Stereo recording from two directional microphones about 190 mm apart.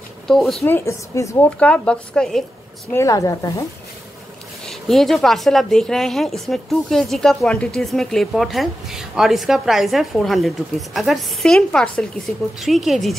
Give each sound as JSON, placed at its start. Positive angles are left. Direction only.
{"t": 0.3, "sound": "a woman's voice", "side_deg": 0}
{"t": 2.9, "sound": "a woman's voice", "side_deg": 15}
{"t": 4.6, "sound": "a woman's voice", "side_deg": 0}